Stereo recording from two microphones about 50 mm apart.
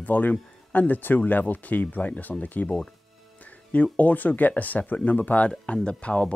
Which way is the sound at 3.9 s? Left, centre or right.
Left.